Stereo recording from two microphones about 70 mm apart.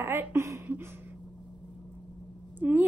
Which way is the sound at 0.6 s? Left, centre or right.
Right.